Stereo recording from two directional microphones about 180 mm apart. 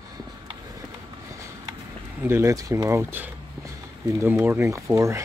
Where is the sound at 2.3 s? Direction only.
15° right (ahead or behind).